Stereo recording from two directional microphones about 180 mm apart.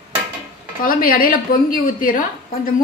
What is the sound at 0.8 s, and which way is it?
A woman's voice, 55° left (ahead or behind).